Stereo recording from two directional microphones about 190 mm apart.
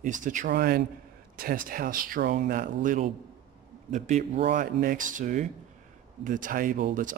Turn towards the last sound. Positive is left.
turn(degrees=-45)  # may be behind; listen again after turning